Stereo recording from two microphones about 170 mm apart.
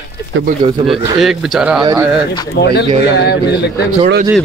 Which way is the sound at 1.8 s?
20° right (ahead or behind).